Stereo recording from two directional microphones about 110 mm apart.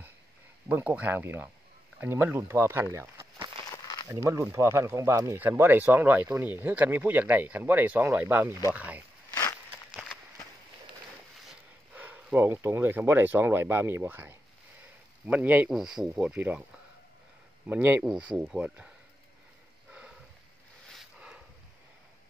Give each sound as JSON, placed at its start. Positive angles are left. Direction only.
{"t": 0.7, "sound": "speech", "side_deg": -15}
{"t": 3.7, "sound": "a sound", "side_deg": 40}
{"t": 4.1, "sound": "speech", "side_deg": -25}
{"t": 11.9, "sound": "speech", "side_deg": -15}
{"t": 15.7, "sound": "speech", "side_deg": -5}
{"t": 21.0, "sound": "a sound", "side_deg": -10}